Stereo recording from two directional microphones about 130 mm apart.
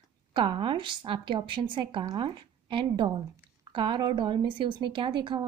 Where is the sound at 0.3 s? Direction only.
40° right (ahead or behind).